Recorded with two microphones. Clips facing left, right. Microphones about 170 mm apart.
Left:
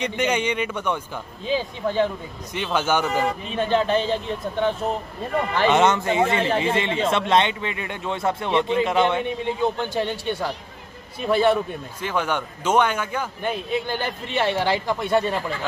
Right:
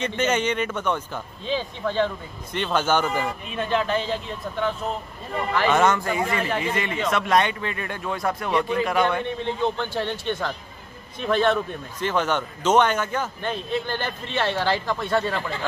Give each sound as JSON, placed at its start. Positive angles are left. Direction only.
{"t": 0.0, "sound": "a man's voice", "side_deg": 15}
{"t": 3.4, "sound": "speech", "side_deg": 30}
{"t": 9.8, "sound": "a man's voice", "side_deg": 15}